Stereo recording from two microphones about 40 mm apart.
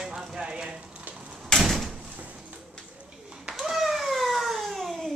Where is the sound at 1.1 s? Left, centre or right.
Centre.